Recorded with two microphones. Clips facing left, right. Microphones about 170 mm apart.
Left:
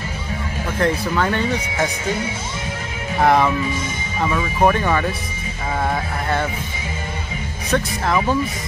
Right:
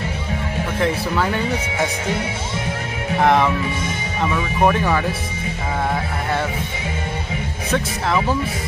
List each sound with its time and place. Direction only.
0.7 s speech: 5° right (ahead or behind)
3.2 s speech: centre (ahead or behind)
7.7 s speech: centre (ahead or behind)